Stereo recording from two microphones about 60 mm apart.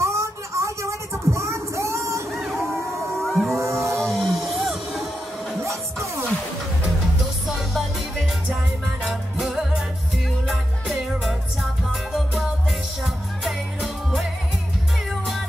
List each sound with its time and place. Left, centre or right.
0.0 s a sound: right
2.3 s a sound: centre
3.2 s music: centre
3.5 s music: right
4.0 s music: centre
7.4 s music: centre
9.4 s music: centre